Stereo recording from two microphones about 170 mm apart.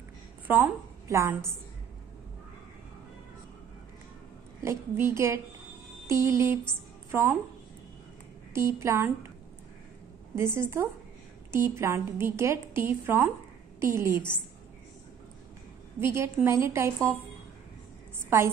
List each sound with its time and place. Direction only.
0.5 s a woman's voice: 10° right (ahead or behind)
4.6 s a woman's voice: 15° right (ahead or behind)
8.5 s a woman's voice: 15° right (ahead or behind)
10.3 s a woman's voice: 15° right (ahead or behind)
16.0 s a woman's voice: 15° right (ahead or behind)
18.3 s a woman's voice: 15° right (ahead or behind)